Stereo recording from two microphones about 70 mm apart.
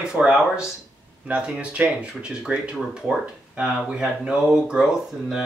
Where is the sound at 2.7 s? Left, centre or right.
Centre.